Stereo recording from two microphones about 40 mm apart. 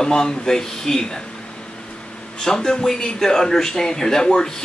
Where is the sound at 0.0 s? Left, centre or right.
Centre.